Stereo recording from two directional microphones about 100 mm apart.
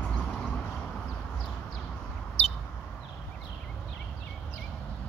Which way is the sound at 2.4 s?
90° left.